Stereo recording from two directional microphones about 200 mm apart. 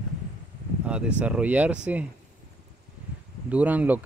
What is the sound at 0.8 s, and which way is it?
Speech, 5° right (ahead or behind).